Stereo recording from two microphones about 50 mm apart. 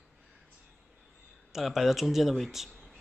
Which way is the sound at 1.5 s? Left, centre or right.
Centre.